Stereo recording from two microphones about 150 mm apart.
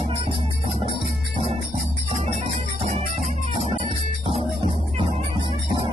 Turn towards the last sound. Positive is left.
turn(degrees=-40)  # may be behind; listen again after turning